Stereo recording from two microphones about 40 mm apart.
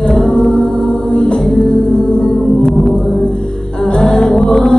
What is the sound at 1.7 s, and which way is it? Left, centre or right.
Music, centre.